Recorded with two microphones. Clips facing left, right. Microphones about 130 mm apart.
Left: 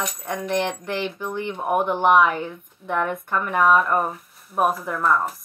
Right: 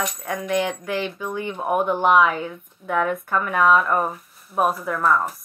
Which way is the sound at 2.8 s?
30° right (ahead or behind).